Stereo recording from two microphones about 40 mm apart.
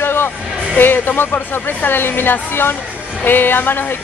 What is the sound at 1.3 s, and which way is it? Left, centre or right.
A woman's voice, left.